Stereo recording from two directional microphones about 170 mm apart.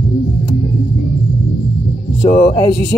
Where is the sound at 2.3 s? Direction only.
35° left (ahead or behind).